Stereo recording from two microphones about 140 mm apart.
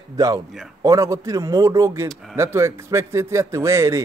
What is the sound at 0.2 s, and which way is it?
A man's voice, 25° right (ahead or behind).